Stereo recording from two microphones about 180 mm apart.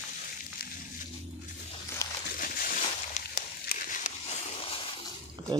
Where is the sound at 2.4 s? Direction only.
50° left (ahead or behind); by 4.8 s 35° left (ahead or behind).